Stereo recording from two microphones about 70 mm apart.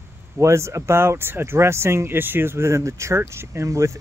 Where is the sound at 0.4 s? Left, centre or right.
Right.